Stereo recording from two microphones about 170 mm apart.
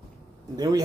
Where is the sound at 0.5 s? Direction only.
25° right (ahead or behind).